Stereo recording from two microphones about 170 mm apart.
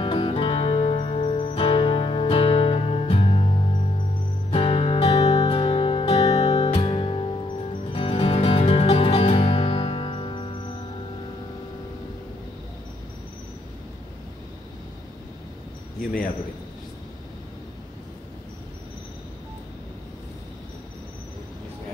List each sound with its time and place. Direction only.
0.0 s music: 30° left (ahead or behind)